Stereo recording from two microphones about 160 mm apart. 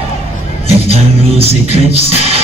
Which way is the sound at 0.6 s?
40° right (ahead or behind).